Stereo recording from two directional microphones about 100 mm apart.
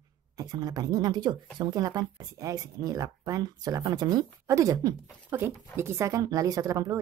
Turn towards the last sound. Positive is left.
turn(degrees=-35)  # may be behind; listen again after turning